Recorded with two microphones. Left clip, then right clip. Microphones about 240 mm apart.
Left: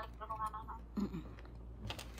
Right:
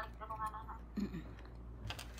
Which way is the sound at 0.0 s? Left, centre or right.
Centre.